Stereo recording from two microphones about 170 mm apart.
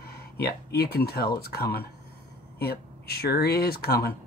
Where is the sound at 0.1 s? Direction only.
70° left (ahead or behind).